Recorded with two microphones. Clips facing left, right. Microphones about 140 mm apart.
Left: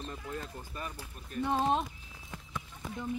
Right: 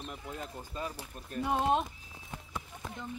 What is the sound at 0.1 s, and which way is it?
Speech, 20° right (ahead or behind).